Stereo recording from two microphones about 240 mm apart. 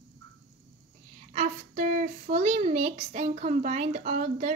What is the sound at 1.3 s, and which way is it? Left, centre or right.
Speech, right.